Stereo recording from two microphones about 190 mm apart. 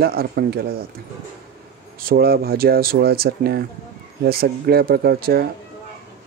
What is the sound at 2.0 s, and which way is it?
Speech, 50° right (ahead or behind).